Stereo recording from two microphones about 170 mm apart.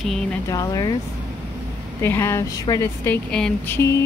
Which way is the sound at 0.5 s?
20° left (ahead or behind).